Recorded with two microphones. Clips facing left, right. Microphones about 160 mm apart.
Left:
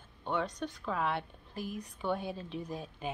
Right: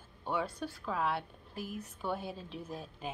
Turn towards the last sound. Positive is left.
turn(degrees=0)  # may be behind; listen again after turning